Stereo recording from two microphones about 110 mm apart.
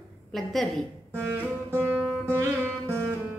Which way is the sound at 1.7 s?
20° right (ahead or behind).